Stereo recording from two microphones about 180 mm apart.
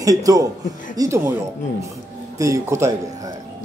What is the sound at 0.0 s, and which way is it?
Speech, 20° right (ahead or behind).